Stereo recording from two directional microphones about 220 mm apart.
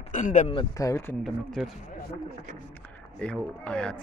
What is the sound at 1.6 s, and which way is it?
Speech, centre (ahead or behind).